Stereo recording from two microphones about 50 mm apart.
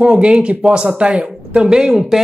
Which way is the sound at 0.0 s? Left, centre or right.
Right.